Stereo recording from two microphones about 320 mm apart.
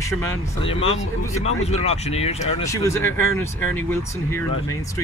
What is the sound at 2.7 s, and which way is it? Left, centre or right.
Speech, centre.